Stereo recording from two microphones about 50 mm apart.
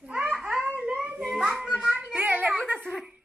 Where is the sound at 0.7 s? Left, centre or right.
Right.